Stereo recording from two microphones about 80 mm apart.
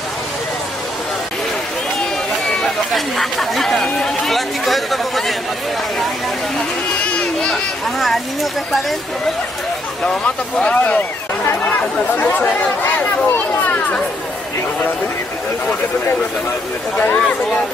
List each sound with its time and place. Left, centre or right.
2.6 s speech: centre
7.4 s speech: centre
10.2 s speech: centre
12.2 s speech: left
16.9 s speech: centre